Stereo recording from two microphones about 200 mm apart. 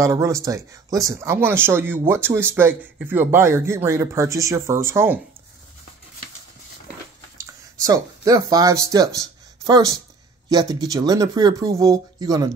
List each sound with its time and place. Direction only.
0.0 s speech: 15° right (ahead or behind)
7.3 s speech: 15° right (ahead or behind)